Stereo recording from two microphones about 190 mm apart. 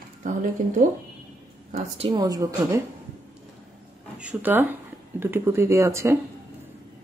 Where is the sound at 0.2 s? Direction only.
40° right (ahead or behind).